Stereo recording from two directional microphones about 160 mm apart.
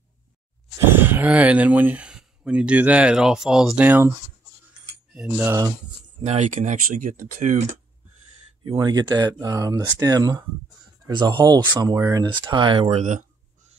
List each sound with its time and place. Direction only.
0.9 s speech: 10° right (ahead or behind)
5.1 s speech: 5° right (ahead or behind)
6.2 s speech: 45° right (ahead or behind)
8.6 s speech: 25° right (ahead or behind)